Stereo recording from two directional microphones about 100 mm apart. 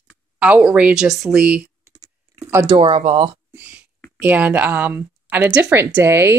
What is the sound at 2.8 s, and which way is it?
Speech, 80° right.